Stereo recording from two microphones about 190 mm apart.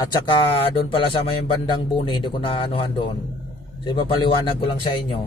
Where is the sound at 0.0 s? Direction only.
25° left (ahead or behind).